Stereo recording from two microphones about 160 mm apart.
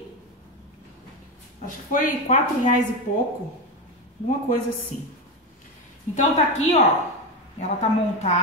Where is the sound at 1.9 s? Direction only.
55° left (ahead or behind).